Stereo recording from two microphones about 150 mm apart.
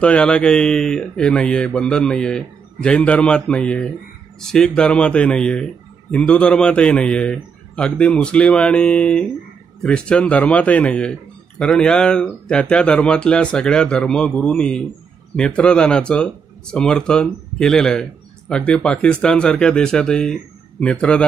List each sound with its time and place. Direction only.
0.0 s a man's voice: 5° left (ahead or behind)